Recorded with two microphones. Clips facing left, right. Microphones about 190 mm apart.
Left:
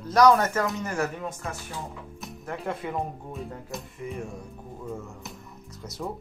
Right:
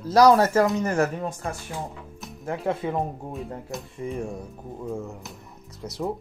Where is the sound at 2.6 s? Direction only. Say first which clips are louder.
Right 5 dB; 30° right (ahead or behind).